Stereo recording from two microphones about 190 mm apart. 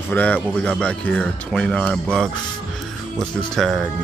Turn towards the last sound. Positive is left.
turn(degrees=0)  # may be behind; listen again after turning